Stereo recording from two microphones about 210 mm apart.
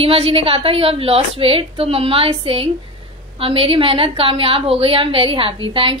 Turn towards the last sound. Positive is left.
turn(degrees=-25)  # may be behind; listen again after turning